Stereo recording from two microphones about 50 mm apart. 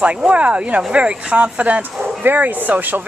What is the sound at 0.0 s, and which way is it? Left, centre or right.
Speech, right.